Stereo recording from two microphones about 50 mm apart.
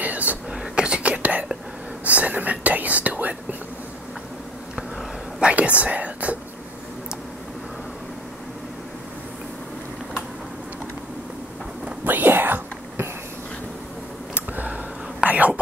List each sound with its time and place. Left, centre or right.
0.0 s whispering: right
0.5 s whispering: centre
5.4 s whispering: right
12.0 s whispering: right
14.3 s a sound: right
15.2 s whispering: right